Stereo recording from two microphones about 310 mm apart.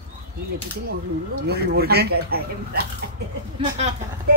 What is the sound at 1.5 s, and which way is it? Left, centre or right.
Speech, right.